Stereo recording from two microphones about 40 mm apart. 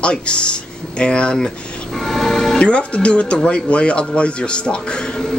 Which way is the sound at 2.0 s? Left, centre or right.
Centre.